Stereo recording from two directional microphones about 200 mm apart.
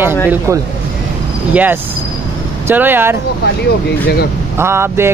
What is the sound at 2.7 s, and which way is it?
Speech, 10° right (ahead or behind).